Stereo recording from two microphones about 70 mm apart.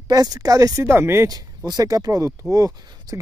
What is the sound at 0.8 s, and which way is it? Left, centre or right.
Speech, right.